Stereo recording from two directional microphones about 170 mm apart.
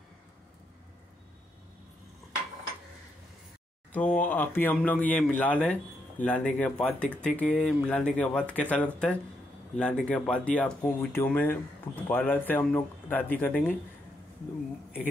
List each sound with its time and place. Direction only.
3.9 s speech: 10° left (ahead or behind)